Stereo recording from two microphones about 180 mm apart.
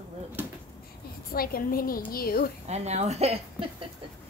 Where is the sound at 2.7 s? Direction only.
35° right (ahead or behind).